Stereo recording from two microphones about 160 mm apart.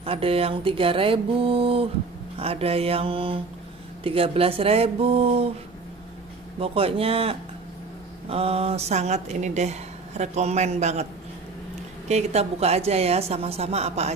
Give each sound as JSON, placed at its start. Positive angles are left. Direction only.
{"t": 0.0, "sound": "a woman's voice", "side_deg": -35}
{"t": 6.6, "sound": "a woman's voice", "side_deg": -35}
{"t": 12.1, "sound": "a woman's voice", "side_deg": -45}